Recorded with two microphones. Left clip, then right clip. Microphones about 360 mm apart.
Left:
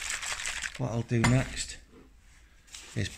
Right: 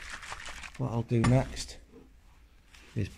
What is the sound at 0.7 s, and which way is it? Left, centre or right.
Speech, centre.